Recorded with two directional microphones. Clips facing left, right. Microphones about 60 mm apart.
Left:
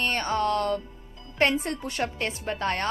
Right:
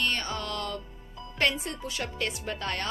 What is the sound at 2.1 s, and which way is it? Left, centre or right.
Speech, left.